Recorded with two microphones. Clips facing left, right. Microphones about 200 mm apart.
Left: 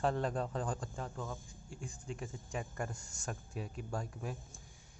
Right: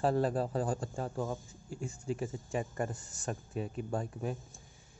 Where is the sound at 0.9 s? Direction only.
35° right (ahead or behind).